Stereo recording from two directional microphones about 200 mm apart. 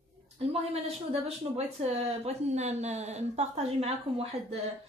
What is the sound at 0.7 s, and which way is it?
A woman's voice, 35° right (ahead or behind).